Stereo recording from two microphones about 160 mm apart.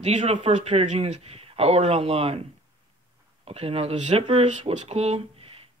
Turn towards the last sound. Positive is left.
turn(degrees=-35)  # may be behind; listen again after turning